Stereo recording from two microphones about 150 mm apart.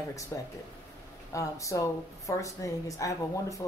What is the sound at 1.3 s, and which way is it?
Speech, 20° left (ahead or behind).